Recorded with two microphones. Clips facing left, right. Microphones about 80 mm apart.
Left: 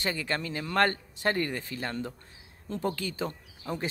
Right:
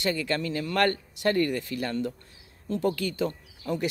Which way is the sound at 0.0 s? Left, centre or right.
Left.